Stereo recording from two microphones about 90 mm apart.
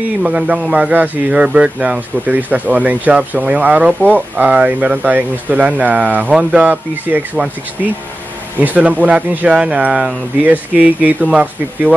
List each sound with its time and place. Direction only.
0.2 s speech: 10° right (ahead or behind)
7.4 s speech: centre (ahead or behind)
8.5 s speech: 15° right (ahead or behind)